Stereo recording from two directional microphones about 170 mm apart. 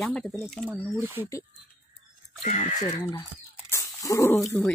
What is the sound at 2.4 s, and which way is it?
Speech, 40° left (ahead or behind).